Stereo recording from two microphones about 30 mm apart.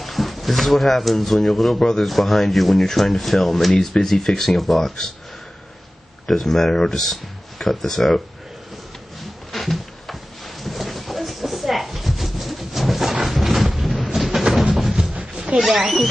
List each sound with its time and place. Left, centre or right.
0.0 s speech: centre
1.8 s speech: centre
2.0 s speech: centre
3.7 s speech: left
4.5 s speech: centre
6.2 s speech: centre
7.0 s speech: centre
9.5 s a sound: centre
13.8 s thunder: centre
15.7 s speech: centre